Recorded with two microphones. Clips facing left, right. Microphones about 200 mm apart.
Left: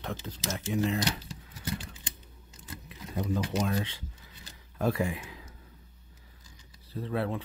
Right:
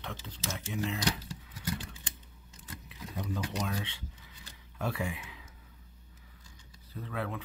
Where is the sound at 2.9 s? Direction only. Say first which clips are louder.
Left 1 dB; 45° left (ahead or behind).